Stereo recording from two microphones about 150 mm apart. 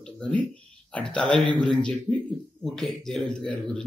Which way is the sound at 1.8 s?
5° left (ahead or behind).